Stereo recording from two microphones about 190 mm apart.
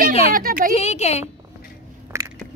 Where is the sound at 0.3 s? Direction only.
50° right (ahead or behind).